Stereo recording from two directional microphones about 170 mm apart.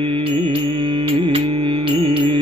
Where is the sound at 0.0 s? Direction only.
30° right (ahead or behind).